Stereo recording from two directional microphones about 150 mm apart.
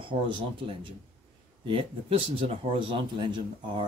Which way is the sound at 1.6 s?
35° right (ahead or behind).